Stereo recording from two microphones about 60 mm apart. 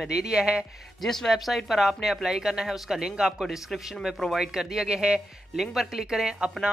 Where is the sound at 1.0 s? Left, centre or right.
Centre.